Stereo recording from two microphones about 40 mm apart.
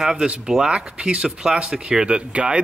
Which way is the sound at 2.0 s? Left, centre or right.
Right.